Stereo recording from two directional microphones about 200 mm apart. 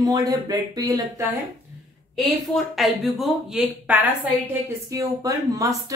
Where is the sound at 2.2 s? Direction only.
Centre (ahead or behind).